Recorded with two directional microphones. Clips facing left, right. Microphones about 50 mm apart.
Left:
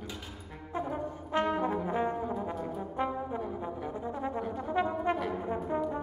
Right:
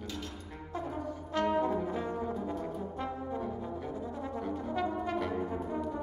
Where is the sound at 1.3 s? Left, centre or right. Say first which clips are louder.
Even; left.